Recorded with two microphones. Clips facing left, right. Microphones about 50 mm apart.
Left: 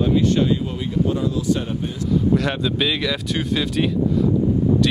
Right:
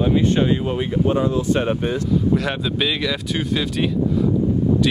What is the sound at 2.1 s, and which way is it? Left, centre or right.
Speech, centre.